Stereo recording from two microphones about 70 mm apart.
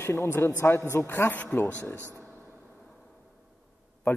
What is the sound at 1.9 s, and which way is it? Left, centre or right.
Speech, right.